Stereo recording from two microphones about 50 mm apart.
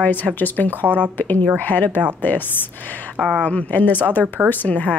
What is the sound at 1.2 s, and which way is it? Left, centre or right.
A woman's voice, left.